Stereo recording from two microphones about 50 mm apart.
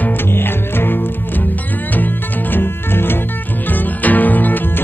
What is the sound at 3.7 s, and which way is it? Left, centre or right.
Music, left.